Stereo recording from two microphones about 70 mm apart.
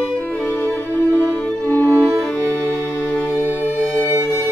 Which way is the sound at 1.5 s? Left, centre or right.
Left.